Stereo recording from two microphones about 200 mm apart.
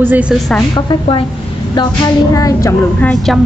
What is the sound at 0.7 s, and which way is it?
A woman's voice, 25° left (ahead or behind).